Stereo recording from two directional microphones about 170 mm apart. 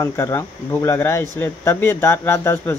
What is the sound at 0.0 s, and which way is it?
Speech, 15° left (ahead or behind).